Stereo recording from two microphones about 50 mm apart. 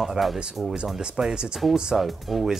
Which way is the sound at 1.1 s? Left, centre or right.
Centre.